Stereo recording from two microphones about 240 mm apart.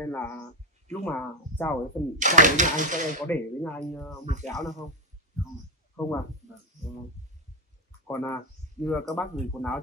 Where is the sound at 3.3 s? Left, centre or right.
Centre.